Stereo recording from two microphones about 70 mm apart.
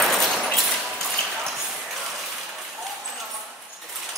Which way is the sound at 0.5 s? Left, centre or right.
Centre.